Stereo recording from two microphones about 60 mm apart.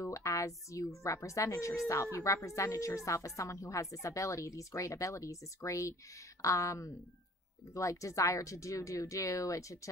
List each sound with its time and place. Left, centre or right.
0.0 s speech: left